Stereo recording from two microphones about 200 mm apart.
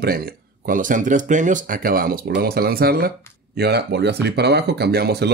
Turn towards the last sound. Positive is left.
turn(degrees=-55)  # may be behind; listen again after turning